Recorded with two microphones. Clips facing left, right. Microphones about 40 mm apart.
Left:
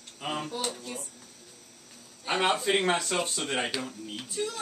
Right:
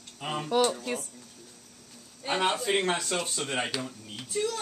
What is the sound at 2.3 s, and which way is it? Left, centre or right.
Speech, centre.